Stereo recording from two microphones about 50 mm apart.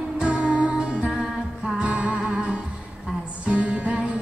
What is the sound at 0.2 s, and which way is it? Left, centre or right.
Music, centre.